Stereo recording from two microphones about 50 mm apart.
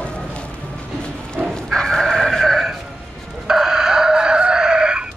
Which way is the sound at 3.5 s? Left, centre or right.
Centre.